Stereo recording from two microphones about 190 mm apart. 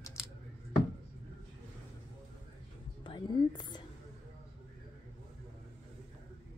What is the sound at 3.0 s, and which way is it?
Whispering, 25° left (ahead or behind).